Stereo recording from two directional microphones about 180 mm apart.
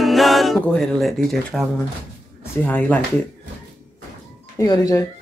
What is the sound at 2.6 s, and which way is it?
Speech, 10° left (ahead or behind).